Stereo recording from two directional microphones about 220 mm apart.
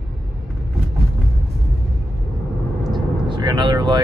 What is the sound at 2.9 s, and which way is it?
Vehicle, 20° right (ahead or behind).